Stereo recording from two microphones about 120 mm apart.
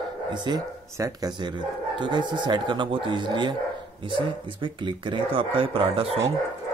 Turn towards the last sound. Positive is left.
turn(degrees=-55)  # may be behind; listen again after turning